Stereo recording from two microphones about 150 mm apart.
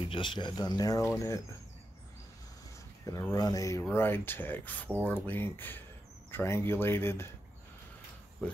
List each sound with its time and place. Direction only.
0.0 s speech: 35° left (ahead or behind)
3.1 s speech: 20° left (ahead or behind)